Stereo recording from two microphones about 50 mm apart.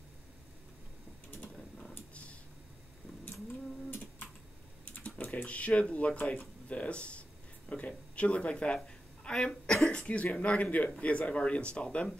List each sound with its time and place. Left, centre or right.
3.9 s typing: left
4.8 s speech: left